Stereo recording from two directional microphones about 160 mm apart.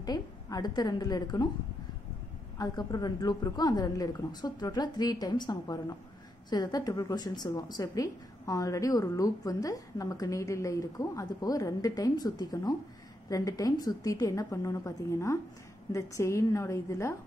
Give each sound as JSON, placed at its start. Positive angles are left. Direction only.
{"t": 0.0, "sound": "a woman's voice", "side_deg": 25}
{"t": 2.5, "sound": "a woman's voice", "side_deg": 25}